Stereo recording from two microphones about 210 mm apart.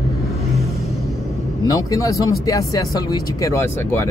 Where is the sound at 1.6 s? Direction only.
15° left (ahead or behind).